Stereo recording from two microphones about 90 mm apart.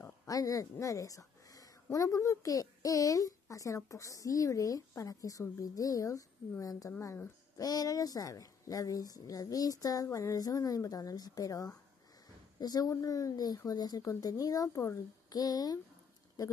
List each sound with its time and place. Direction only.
0.3 s a woman's voice: 40° left (ahead or behind)
15.2 s a woman's voice: 45° left (ahead or behind)